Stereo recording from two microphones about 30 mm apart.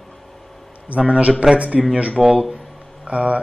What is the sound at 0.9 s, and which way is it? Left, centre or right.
Speech, right.